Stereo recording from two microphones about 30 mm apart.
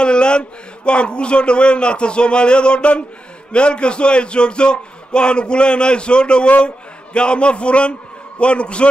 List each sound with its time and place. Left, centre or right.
0.0 s a man's voice: left